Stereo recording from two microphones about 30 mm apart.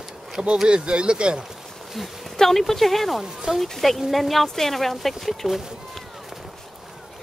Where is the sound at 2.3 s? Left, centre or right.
Centre.